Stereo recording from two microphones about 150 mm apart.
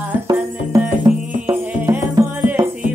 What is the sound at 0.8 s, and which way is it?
Music, 15° right (ahead or behind).